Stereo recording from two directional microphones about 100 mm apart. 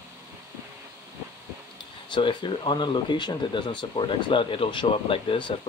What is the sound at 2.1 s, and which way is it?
Speech, 55° left (ahead or behind).